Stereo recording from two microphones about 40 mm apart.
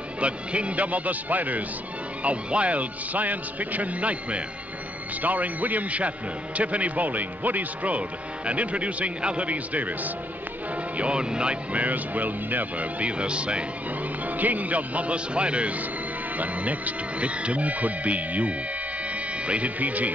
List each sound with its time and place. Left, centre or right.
0.2 s a man's voice: right
9.5 s a man's voice: right
11.0 s speech: right
11.7 s a man's voice: right
14.2 s a man's voice: right
16.3 s a man's voice: right